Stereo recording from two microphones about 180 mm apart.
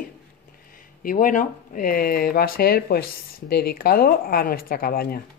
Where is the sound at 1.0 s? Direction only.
50° left (ahead or behind).